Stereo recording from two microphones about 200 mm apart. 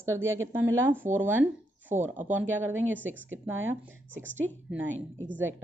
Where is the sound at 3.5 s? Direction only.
80° right.